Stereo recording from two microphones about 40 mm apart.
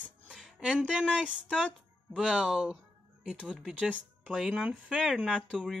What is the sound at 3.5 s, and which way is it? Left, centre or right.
Speech, centre.